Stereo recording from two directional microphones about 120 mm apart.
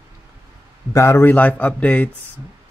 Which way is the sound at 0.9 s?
20° left (ahead or behind).